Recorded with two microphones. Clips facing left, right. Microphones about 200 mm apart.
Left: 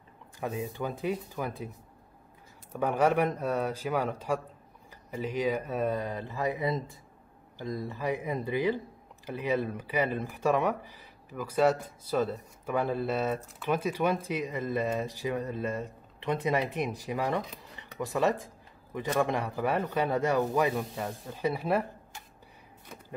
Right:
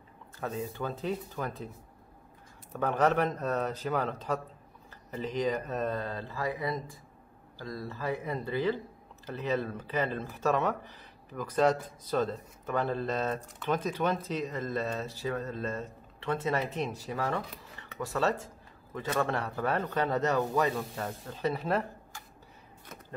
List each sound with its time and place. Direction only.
0.4 s speech: 15° left (ahead or behind)
2.7 s speech: 10° left (ahead or behind)